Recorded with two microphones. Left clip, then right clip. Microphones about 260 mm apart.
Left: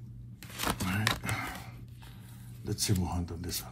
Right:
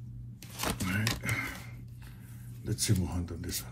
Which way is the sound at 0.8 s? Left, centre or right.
Centre.